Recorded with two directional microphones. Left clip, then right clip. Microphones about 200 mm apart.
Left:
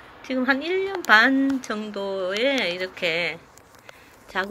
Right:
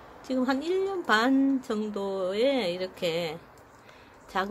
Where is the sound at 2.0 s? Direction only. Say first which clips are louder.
Left 6 dB; 10° left (ahead or behind).